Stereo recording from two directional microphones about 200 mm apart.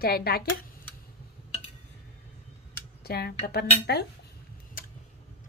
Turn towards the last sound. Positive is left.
turn(degrees=45)  # may be behind; listen again after turning